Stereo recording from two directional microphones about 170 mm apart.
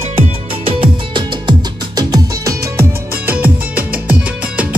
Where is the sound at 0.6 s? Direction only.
30° right (ahead or behind).